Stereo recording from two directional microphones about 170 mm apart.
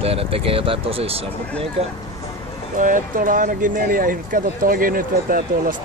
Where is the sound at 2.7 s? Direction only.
50° right (ahead or behind).